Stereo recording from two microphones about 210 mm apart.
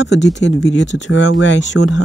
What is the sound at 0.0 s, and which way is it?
Speech, 55° left (ahead or behind).